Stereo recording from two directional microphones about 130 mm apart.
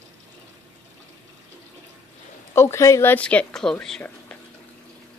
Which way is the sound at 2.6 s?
20° left (ahead or behind).